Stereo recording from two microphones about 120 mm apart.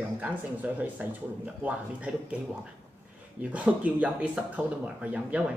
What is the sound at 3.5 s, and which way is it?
Speech, 10° right (ahead or behind).